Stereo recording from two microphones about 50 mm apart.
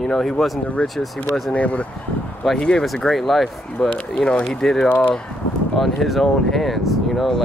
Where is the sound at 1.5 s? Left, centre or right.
Left.